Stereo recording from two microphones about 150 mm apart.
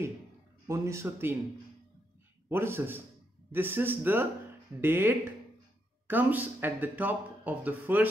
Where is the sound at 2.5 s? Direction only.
15° right (ahead or behind).